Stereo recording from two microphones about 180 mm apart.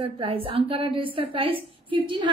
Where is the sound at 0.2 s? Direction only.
30° right (ahead or behind).